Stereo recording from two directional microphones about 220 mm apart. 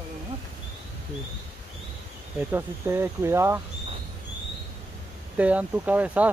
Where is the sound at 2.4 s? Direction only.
10° right (ahead or behind).